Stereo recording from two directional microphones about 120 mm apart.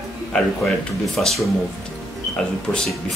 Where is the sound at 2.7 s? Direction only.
5° left (ahead or behind).